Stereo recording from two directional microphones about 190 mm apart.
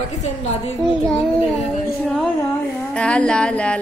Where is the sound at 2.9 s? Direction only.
5° left (ahead or behind).